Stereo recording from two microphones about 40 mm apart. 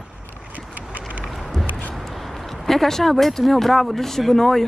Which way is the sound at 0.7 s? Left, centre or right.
Right.